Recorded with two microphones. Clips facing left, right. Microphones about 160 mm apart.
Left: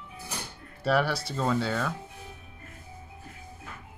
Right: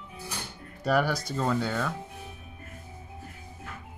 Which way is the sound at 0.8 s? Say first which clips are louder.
Even; 5° left (ahead or behind).